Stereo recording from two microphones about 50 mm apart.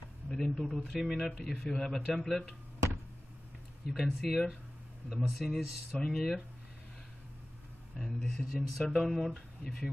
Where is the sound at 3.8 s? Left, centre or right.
Centre.